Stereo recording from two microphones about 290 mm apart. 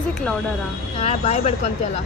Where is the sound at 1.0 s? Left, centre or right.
Left.